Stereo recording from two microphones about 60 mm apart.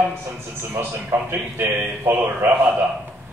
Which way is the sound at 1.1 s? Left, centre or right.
Right.